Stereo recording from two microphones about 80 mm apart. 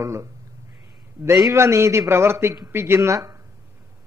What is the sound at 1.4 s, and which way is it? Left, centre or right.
A man's voice, right.